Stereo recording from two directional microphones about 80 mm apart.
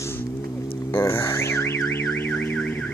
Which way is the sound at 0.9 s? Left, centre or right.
Left.